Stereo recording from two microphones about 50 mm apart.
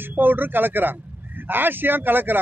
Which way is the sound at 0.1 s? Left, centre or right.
Right.